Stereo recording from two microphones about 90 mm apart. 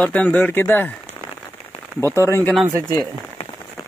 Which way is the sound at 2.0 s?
25° left (ahead or behind).